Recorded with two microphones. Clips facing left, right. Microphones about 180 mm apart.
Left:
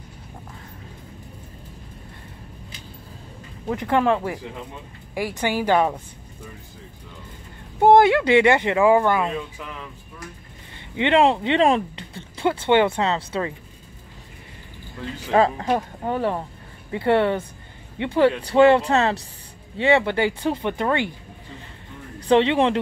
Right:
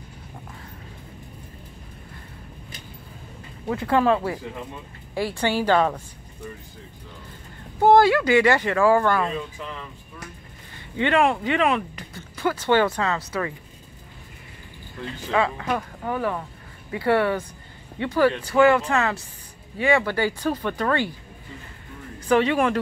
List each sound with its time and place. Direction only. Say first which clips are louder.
3.6 s a woman's voice: even; 20° left (ahead or behind)
7.8 s speech: left 2 dB; 20° left (ahead or behind)
11.0 s speech: left 3 dB; 25° left (ahead or behind)
15.3 s speech: left 5 dB; 35° left (ahead or behind); by 21.1 s 20° left (ahead or behind)
22.3 s speech: left 2 dB; 25° left (ahead or behind)